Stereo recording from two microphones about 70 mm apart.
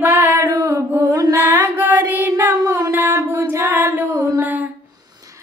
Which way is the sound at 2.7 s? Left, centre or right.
Right.